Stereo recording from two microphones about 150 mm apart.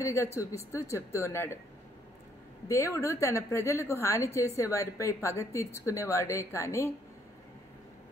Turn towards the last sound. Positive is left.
turn(degrees=20)  # may be behind; listen again after turning